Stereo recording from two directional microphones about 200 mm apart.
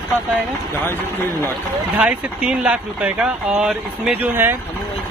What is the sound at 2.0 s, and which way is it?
Speech, 5° right (ahead or behind).